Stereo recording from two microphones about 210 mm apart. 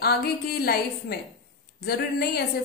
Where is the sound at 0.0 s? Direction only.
50° left (ahead or behind).